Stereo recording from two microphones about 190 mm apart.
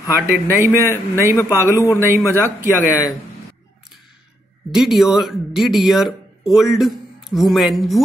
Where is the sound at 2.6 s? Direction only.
10° right (ahead or behind).